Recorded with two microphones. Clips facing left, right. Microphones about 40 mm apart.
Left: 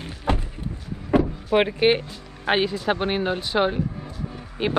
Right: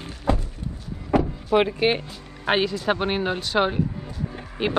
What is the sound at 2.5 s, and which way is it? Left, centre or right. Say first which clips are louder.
Speech: even; centre.